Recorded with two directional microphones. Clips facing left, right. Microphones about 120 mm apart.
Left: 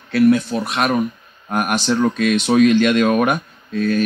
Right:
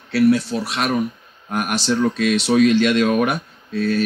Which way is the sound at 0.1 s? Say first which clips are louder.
Left 2 dB; 50° left (ahead or behind).